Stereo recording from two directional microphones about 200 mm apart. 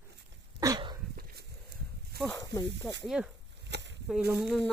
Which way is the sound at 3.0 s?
Centre (ahead or behind).